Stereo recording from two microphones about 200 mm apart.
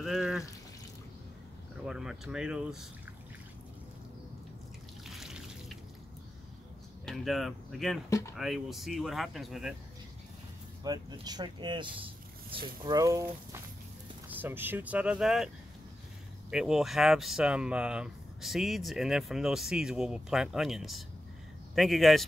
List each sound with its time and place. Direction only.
0.0 s a sound: centre (ahead or behind)
1.9 s speech: 5° right (ahead or behind)
5.0 s trickle: centre (ahead or behind)
7.1 s speech: centre (ahead or behind)
10.8 s speech: 20° right (ahead or behind); by 22.2 s centre (ahead or behind)